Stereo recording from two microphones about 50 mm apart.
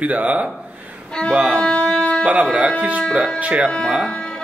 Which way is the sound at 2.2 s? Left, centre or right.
Right.